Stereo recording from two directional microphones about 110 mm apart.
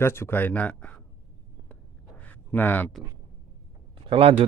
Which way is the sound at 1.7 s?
15° left (ahead or behind).